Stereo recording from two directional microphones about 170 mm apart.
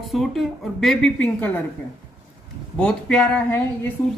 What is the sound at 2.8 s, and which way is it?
Speech, 5° left (ahead or behind).